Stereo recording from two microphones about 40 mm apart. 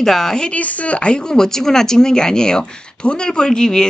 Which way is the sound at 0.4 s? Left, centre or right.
Left.